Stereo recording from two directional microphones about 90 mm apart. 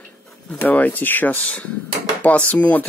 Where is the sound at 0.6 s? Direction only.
20° left (ahead or behind).